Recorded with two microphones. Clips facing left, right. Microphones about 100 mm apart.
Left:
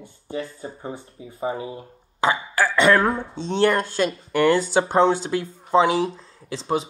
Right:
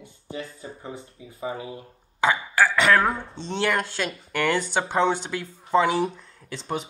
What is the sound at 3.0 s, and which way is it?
Speech, centre (ahead or behind).